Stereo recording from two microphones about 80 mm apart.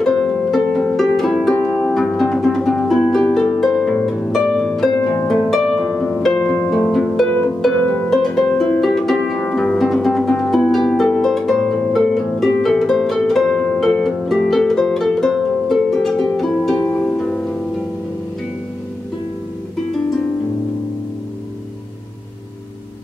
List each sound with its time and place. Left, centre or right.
0.0 s harp: centre
1.6 s harp: centre
2.1 s music: centre
2.9 s harp: centre
4.9 s harp: left
5.3 s harp: centre
6.3 s harp: centre
6.7 s harp: centre
8.1 s harp: centre
8.8 s music: centre
9.6 s harp: centre
16.8 s harp: left